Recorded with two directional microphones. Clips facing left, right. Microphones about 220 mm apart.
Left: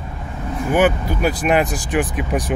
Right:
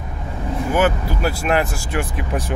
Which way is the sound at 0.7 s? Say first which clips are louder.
Left 3 dB; 15° left (ahead or behind).